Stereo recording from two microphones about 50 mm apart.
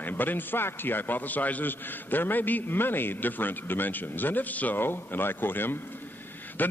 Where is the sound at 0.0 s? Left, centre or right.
Left.